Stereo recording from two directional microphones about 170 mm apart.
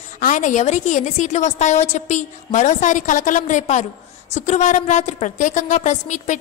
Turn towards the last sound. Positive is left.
turn(degrees=45)  # may be behind; listen again after turning